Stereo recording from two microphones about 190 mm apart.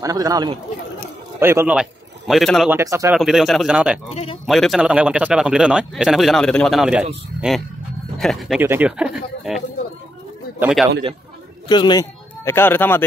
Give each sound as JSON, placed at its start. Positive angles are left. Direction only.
{"t": 0.0, "sound": "a man's voice", "side_deg": -20}
{"t": 2.7, "sound": "speech", "side_deg": -15}
{"t": 3.2, "sound": "a man's voice", "side_deg": 0}
{"t": 4.1, "sound": "speech", "side_deg": 30}
{"t": 4.5, "sound": "a man's voice", "side_deg": 0}
{"t": 8.2, "sound": "a man's voice", "side_deg": 0}
{"t": 10.6, "sound": "a man's voice", "side_deg": 0}
{"t": 11.7, "sound": "speech", "side_deg": 20}